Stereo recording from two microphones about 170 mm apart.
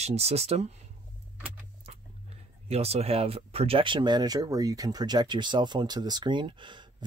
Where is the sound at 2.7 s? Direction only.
35° right (ahead or behind).